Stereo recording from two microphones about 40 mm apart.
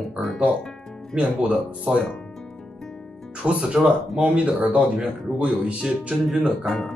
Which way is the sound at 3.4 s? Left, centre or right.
Right.